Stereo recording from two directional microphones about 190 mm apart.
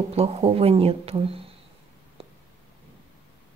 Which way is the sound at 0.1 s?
30° right (ahead or behind).